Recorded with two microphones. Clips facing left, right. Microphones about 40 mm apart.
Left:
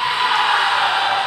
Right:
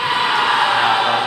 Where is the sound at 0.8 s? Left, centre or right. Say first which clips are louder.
Right 2 dB; centre.